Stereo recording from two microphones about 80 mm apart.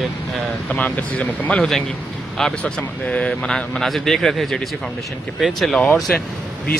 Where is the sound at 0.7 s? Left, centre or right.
Centre.